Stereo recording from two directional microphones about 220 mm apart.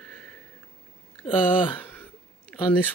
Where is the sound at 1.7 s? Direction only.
10° left (ahead or behind).